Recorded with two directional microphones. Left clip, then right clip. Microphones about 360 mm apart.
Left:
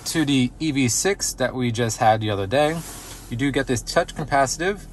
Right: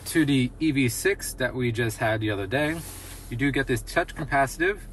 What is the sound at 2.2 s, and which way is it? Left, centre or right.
Speech, centre.